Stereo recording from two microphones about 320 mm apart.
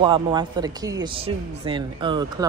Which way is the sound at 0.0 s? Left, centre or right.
Centre.